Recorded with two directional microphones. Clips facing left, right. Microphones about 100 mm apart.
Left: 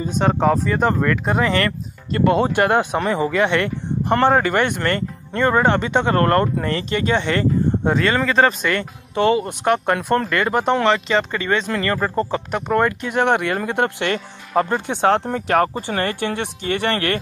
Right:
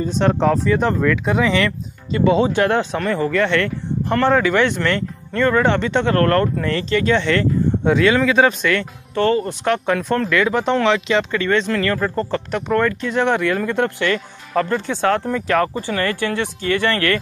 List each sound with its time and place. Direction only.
0.2 s speech: 5° left (ahead or behind); by 4.4 s 20° left (ahead or behind)
4.4 s speech: 50° left (ahead or behind)
4.7 s speech: 5° left (ahead or behind)
5.4 s speech: 15° left (ahead or behind)
9.1 s speech: 15° left (ahead or behind)
9.4 s speech: 5° left (ahead or behind)
13.1 s speech: 60° left (ahead or behind)
14.5 s speech: 25° left (ahead or behind)